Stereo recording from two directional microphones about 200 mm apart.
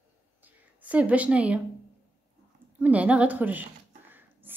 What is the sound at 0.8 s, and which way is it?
Speech, 5° right (ahead or behind).